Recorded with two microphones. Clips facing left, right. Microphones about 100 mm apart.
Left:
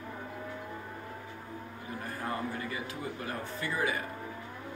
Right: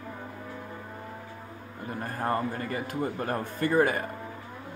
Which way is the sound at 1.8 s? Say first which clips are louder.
Right 7 dB; 50° right (ahead or behind).